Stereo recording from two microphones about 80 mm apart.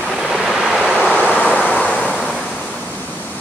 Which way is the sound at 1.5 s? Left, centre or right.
Centre.